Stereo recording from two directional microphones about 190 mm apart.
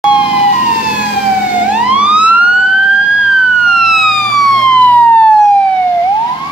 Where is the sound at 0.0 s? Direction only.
25° left (ahead or behind).